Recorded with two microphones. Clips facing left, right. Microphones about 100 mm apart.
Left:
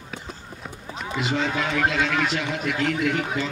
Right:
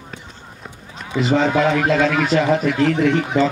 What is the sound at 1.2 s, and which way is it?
A man's voice, 40° right (ahead or behind).